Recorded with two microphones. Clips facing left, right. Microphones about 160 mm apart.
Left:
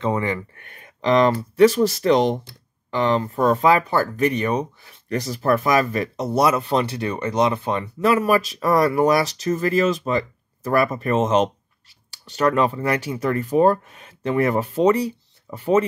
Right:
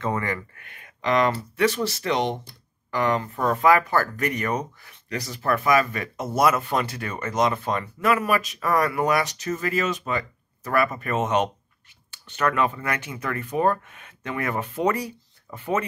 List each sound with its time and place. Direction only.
0.0 s speech: 20° left (ahead or behind)
0.7 s a sound: 35° left (ahead or behind)
1.6 s speech: 35° left (ahead or behind)
2.9 s speech: 25° left (ahead or behind)